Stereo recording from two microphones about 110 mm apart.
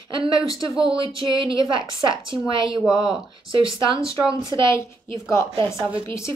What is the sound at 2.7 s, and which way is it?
Speech, 5° right (ahead or behind).